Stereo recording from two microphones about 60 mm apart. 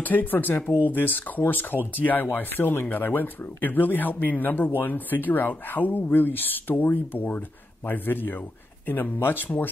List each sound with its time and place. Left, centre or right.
0.0 s speech: left